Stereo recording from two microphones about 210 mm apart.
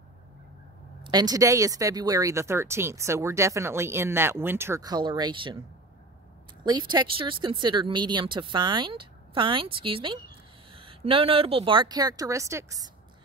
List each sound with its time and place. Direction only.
1.0 s speech: 20° right (ahead or behind)
6.6 s speech: 20° right (ahead or behind)